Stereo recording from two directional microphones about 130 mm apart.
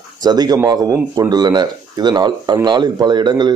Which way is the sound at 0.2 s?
30° right (ahead or behind).